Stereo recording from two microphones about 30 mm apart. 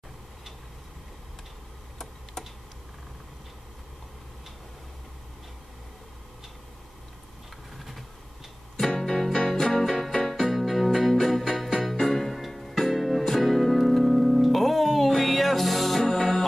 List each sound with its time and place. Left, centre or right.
7.7 s vehicle: centre
8.7 s music: centre